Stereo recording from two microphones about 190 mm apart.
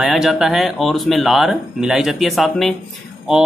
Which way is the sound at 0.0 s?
Centre (ahead or behind).